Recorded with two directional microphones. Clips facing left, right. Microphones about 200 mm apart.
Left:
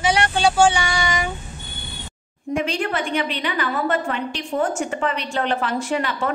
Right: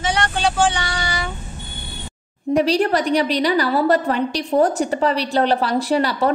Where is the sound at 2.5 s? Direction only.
35° right (ahead or behind).